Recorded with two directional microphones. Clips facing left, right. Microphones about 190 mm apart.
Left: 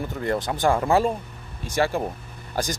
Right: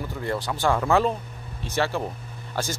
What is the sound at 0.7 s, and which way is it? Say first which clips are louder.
Speech: even; 30° left (ahead or behind).